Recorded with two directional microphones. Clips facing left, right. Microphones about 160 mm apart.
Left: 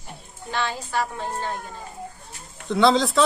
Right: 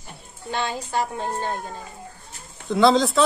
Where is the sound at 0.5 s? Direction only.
20° right (ahead or behind).